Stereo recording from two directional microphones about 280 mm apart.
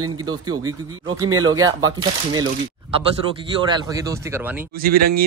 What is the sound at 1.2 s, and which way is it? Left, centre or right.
Speech, centre.